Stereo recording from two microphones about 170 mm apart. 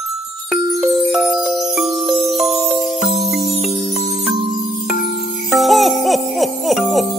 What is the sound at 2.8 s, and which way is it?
Music, centre (ahead or behind).